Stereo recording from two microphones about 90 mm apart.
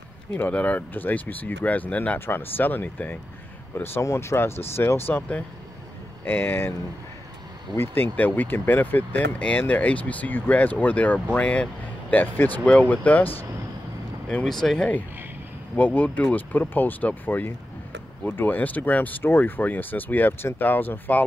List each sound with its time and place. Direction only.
0.4 s speech: 15° left (ahead or behind)
7.7 s speech: 25° left (ahead or behind)
14.4 s speech: 5° left (ahead or behind)
15.7 s speech: 20° left (ahead or behind)